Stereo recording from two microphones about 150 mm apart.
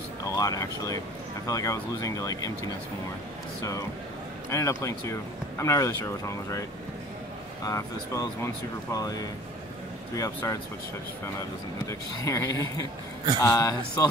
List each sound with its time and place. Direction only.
0.2 s speech: 25° left (ahead or behind)
4.5 s speech: 20° left (ahead or behind)
7.6 s speech: 25° left (ahead or behind)
11.9 s speech: 20° left (ahead or behind)